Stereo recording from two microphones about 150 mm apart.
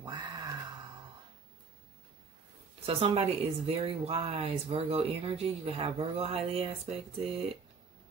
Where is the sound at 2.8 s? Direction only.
40° right (ahead or behind).